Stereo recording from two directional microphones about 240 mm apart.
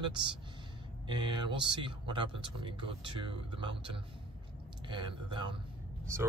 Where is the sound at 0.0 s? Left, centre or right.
Centre.